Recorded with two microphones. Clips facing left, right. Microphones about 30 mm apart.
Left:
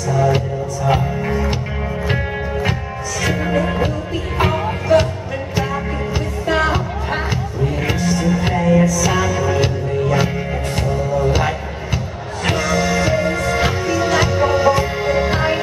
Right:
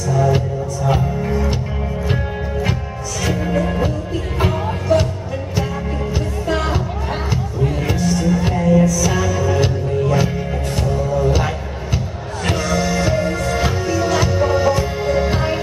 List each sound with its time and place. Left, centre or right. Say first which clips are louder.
0.1 s music: left 1 dB; centre
3.4 s music: even; centre
6.4 s music: left 4 dB; centre
8.8 s music: left 1 dB; centre